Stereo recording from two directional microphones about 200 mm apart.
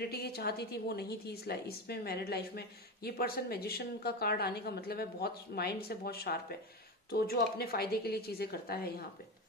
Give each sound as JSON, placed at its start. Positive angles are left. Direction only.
{"t": 0.0, "sound": "a woman's voice", "side_deg": 50}